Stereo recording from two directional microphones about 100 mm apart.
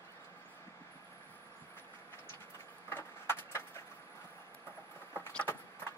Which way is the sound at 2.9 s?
25° left (ahead or behind).